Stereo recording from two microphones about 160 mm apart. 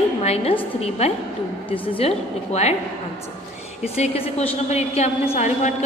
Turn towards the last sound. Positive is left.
turn(degrees=50)  # may be behind; listen again after turning